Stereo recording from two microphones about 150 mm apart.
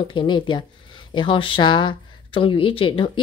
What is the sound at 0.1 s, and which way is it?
Speech, 35° left (ahead or behind).